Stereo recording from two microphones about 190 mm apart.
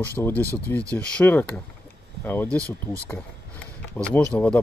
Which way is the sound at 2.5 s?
15° right (ahead or behind).